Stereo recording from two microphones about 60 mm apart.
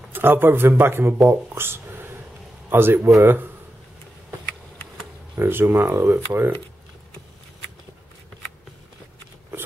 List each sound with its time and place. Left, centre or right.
0.1 s speech: right
5.4 s speech: right